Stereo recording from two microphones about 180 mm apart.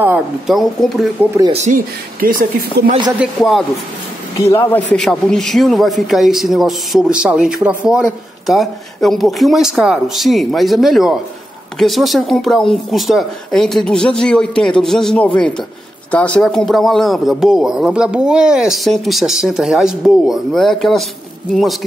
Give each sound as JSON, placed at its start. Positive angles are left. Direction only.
{"t": 0.0, "sound": "speech", "side_deg": -5}
{"t": 1.5, "sound": "speech", "side_deg": -45}
{"t": 2.8, "sound": "speech", "side_deg": -65}
{"t": 3.2, "sound": "speech", "side_deg": 0}
{"t": 4.4, "sound": "speech", "side_deg": 15}
{"t": 4.9, "sound": "speech", "side_deg": 5}